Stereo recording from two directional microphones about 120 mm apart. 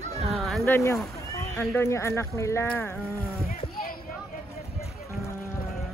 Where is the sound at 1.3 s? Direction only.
30° left (ahead or behind).